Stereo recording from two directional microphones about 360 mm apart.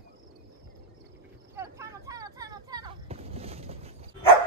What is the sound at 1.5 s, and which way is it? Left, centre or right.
Vehicle, centre.